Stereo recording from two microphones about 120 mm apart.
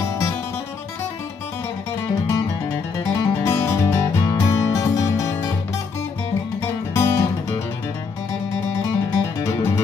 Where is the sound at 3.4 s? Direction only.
20° left (ahead or behind).